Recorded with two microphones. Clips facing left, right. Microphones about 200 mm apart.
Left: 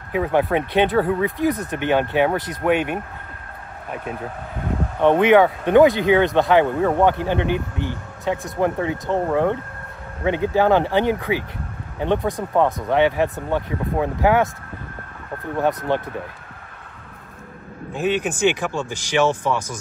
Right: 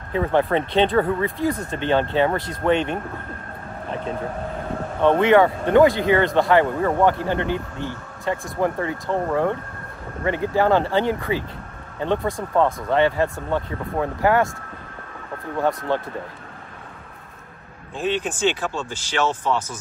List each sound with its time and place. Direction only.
0.1 s speech: 10° left (ahead or behind)
1.4 s speech: 20° left (ahead or behind)
5.0 s speech: 15° left (ahead or behind)
15.9 s speech: 20° left (ahead or behind)
17.9 s speech: 10° left (ahead or behind)